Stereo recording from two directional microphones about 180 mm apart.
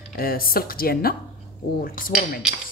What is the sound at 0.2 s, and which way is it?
Speech, 55° left (ahead or behind).